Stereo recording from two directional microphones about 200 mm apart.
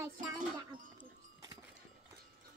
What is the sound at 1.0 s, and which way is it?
Livestock, 20° right (ahead or behind).